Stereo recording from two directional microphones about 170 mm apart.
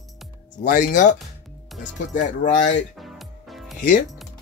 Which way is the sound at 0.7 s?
50° left (ahead or behind).